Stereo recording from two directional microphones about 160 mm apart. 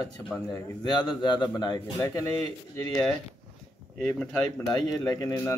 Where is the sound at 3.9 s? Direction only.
Centre (ahead or behind).